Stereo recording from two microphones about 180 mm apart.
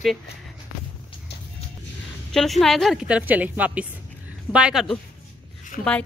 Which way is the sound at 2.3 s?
Centre (ahead or behind).